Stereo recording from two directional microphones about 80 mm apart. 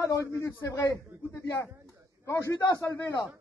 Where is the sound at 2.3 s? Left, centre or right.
Left.